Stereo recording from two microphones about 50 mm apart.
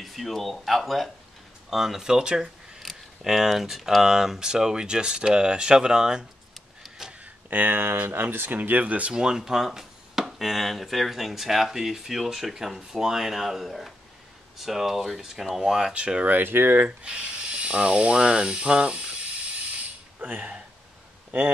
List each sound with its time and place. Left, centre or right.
0.0 s speech: centre
2.8 s a sound: centre
3.2 s speech: centre
7.0 s a sound: centre
7.4 s speech: right
8.5 s speech: right
9.1 s speech: centre
16.3 s speech: right
16.8 s speech: right
20.2 s speech: right